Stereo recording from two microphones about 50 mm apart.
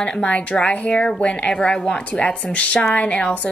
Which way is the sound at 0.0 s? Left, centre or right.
Centre.